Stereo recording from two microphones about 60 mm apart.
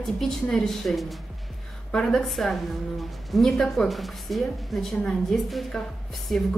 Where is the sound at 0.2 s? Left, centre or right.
Centre.